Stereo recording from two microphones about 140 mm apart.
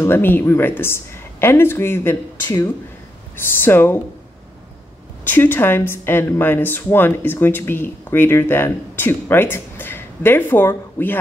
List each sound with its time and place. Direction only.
0.0 s speech: 15° left (ahead or behind)
5.2 s speech: 15° left (ahead or behind)